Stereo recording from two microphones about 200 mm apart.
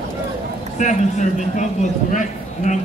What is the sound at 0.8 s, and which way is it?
A man's voice, 35° left (ahead or behind).